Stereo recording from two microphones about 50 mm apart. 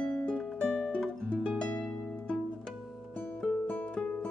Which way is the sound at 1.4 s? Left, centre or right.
Centre.